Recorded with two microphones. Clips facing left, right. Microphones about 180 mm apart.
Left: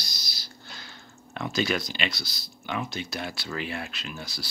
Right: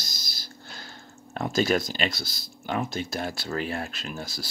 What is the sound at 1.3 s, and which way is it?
Speech, 45° right (ahead or behind).